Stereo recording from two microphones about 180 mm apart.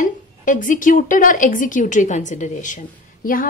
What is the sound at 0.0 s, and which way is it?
A woman's voice, 45° left (ahead or behind).